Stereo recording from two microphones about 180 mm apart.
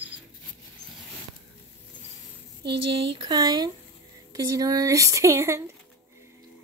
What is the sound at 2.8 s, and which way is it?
Speech, 30° right (ahead or behind).